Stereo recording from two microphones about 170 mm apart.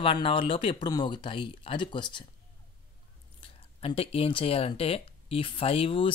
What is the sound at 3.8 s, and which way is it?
Speech, 35° left (ahead or behind).